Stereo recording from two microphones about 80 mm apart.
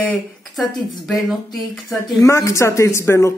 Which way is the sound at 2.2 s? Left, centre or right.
Left.